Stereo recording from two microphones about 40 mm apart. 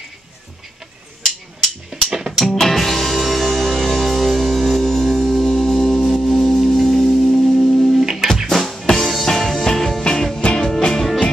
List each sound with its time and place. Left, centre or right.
1.9 s music: centre
2.4 s music: centre
7.2 s music: centre
8.0 s music: centre
8.5 s music: centre
10.4 s music: left
11.0 s music: centre